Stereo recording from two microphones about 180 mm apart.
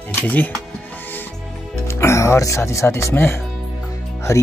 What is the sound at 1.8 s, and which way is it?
Speech, 15° left (ahead or behind).